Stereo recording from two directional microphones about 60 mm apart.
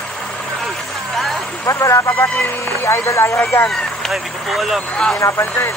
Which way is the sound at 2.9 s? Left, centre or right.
Left.